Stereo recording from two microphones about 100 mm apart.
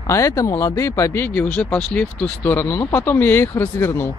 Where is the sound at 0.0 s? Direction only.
30° left (ahead or behind).